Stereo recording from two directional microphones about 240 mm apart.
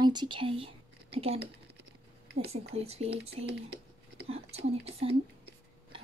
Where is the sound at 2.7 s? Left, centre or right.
Right.